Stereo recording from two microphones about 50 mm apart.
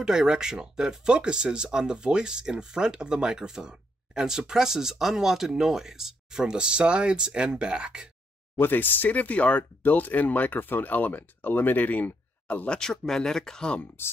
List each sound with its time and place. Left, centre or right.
0.0 s speech: centre
8.5 s speech: left
12.6 s speech: centre